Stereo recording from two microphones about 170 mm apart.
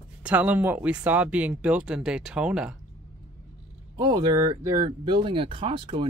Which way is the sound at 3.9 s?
25° right (ahead or behind).